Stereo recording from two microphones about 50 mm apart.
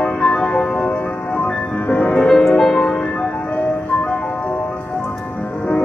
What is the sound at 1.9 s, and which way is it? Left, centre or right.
Music, left.